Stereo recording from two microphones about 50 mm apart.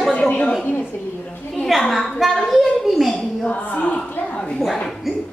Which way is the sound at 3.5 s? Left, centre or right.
Left.